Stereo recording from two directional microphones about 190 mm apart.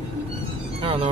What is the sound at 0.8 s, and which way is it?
Music, 25° right (ahead or behind).